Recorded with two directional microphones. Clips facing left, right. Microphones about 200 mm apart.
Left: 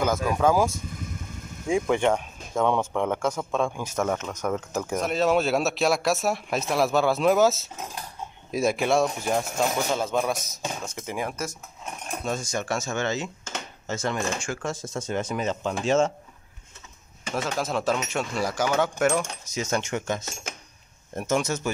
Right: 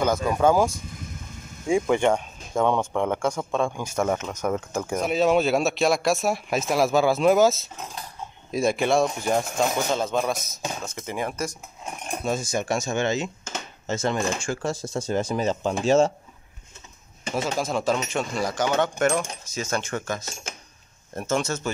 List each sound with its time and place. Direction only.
0.0 s speech: 5° left (ahead or behind); by 16.1 s 35° right (ahead or behind)
17.6 s speech: centre (ahead or behind)
19.5 s speech: 20° left (ahead or behind)